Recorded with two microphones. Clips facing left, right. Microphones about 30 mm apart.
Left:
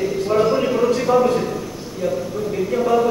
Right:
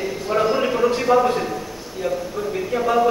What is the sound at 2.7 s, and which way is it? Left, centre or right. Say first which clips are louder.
Speech: left 1 dB; centre.